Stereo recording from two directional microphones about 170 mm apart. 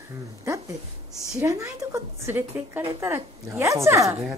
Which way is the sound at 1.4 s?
15° right (ahead or behind).